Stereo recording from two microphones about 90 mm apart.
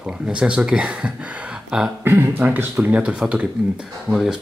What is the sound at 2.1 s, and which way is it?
Speech, 25° right (ahead or behind).